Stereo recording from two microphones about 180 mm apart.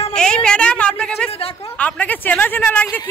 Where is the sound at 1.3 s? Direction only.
35° left (ahead or behind).